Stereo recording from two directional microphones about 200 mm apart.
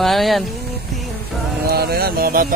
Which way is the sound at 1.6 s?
50° right (ahead or behind).